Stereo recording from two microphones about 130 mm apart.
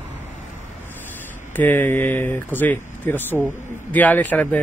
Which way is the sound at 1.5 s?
15° left (ahead or behind).